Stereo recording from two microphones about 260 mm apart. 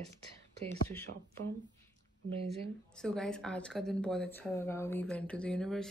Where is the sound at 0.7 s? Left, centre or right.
Centre.